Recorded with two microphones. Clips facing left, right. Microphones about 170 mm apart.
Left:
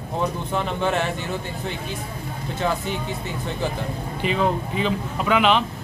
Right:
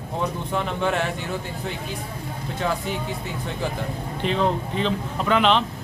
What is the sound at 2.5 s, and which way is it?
Speech, centre (ahead or behind).